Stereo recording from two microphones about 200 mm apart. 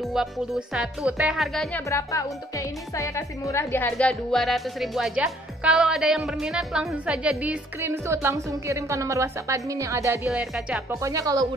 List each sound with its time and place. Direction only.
0.1 s speech: centre (ahead or behind)
1.9 s speech: 15° left (ahead or behind); by 10.2 s 15° right (ahead or behind)
10.2 s speech: 5° right (ahead or behind)
10.9 s speech: 15° right (ahead or behind)